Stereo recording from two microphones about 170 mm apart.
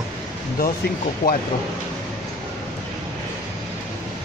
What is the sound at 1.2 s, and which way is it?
Speech, 60° left (ahead or behind).